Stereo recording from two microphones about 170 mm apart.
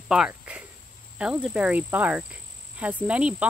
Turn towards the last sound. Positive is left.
turn(degrees=-5)  # may be behind; listen again after turning